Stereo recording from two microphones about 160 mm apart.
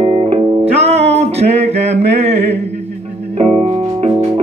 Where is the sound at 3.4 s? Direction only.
45° right (ahead or behind).